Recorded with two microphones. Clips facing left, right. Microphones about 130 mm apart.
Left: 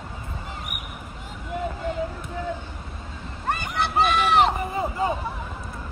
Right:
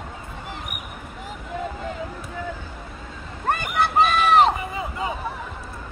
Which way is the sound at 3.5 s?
50° right (ahead or behind).